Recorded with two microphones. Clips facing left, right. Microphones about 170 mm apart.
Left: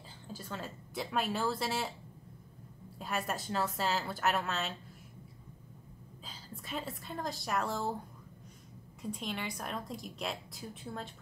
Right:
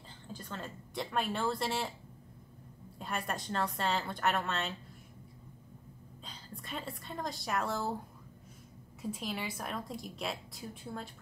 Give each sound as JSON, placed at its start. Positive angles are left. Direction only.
{"t": 0.3, "sound": "speech", "side_deg": 5}
{"t": 3.0, "sound": "a woman's voice", "side_deg": 0}
{"t": 6.2, "sound": "a woman's voice", "side_deg": 0}
{"t": 9.0, "sound": "a woman's voice", "side_deg": 0}